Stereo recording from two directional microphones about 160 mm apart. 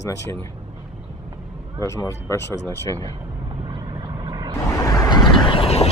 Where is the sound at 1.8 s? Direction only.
20° left (ahead or behind).